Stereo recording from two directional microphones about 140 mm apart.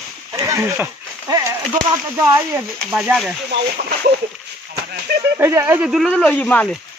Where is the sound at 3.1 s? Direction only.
5° right (ahead or behind).